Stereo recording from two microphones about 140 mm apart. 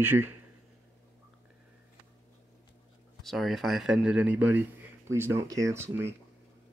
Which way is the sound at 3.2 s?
Centre (ahead or behind).